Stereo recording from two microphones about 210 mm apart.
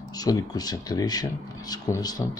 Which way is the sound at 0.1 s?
15° left (ahead or behind).